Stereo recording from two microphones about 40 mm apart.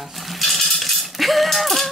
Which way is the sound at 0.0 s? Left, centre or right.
Centre.